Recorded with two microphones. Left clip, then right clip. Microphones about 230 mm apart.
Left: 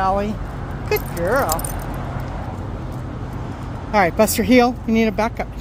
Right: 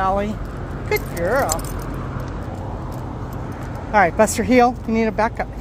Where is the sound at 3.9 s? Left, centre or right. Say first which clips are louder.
Right 1 dB; centre.